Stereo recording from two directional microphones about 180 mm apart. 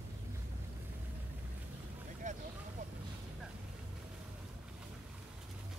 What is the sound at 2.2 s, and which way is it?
Vehicle, 40° right (ahead or behind).